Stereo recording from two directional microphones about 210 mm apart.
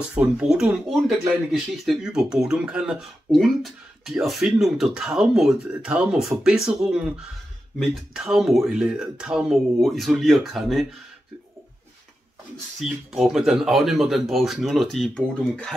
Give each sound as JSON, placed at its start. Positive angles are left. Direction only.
{"t": 0.1, "sound": "speech", "side_deg": -5}
{"t": 12.8, "sound": "speech", "side_deg": 0}